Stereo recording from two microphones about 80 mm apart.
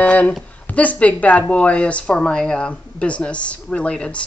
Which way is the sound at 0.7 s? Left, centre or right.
Centre.